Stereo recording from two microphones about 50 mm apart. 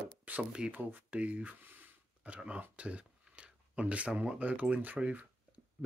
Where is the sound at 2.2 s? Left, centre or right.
Right.